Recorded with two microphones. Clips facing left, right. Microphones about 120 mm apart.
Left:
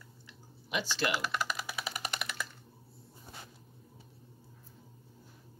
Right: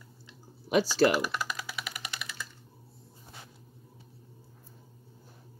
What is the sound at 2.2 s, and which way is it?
Typing, 65° left (ahead or behind).